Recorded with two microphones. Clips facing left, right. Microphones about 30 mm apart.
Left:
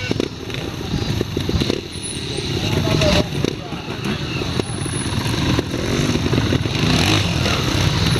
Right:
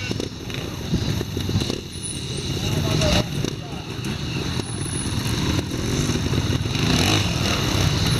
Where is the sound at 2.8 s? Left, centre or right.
Left.